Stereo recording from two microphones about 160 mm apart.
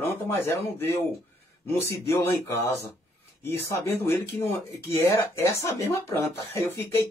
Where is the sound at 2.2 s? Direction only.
15° left (ahead or behind).